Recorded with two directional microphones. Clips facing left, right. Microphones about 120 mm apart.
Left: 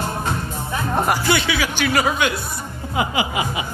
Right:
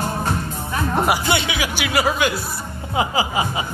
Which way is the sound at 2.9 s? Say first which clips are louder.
Right 1 dB; 30° right (ahead or behind).